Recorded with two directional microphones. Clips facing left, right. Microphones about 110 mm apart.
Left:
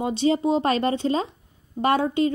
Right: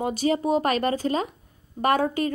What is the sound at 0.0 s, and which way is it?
A woman's voice, 25° left (ahead or behind).